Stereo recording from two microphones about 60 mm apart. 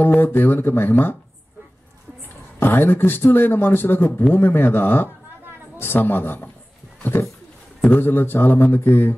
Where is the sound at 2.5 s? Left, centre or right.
Left.